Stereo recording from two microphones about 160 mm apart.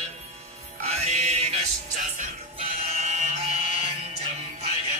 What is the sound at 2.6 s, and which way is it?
Chant, 45° right (ahead or behind).